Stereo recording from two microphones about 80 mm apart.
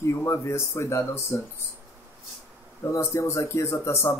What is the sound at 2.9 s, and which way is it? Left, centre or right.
Speech, left.